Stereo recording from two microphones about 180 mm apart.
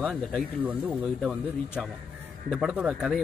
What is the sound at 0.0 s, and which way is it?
Speech, centre (ahead or behind).